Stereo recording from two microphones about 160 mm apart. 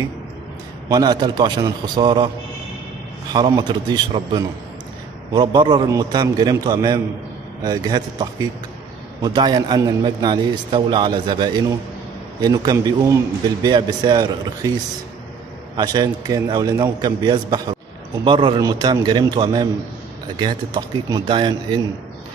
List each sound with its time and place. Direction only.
0.8 s a man's voice: 25° right (ahead or behind)
3.3 s a man's voice: 25° right (ahead or behind)
15.7 s a man's voice: 25° right (ahead or behind)